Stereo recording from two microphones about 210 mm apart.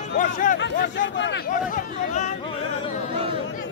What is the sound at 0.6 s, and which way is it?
Speech, 60° left (ahead or behind).